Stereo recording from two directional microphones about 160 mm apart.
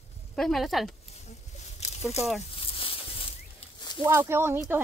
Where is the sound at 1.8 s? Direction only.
45° left (ahead or behind).